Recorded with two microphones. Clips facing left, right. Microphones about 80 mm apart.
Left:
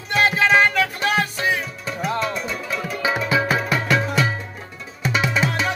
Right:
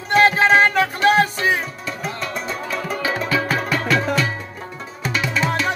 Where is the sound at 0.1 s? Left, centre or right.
Right.